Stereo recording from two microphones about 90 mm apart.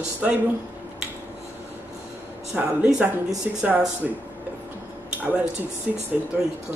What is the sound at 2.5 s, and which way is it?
A woman's voice, 15° right (ahead or behind).